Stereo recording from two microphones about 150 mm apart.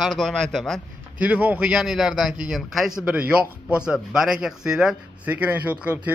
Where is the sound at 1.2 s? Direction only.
10° right (ahead or behind).